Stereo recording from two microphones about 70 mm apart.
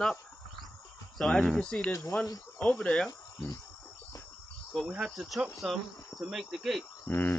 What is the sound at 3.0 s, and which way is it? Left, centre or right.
Cricket, left.